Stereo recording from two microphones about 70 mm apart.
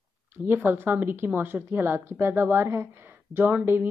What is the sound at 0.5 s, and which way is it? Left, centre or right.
A woman's voice, right.